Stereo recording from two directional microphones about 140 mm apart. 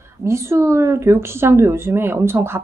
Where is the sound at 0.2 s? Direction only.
20° right (ahead or behind).